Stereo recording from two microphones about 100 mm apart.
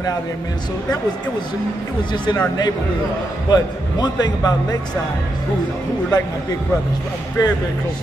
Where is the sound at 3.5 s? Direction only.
45° left (ahead or behind).